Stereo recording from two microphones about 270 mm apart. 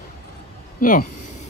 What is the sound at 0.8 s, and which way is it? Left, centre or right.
Speech, left.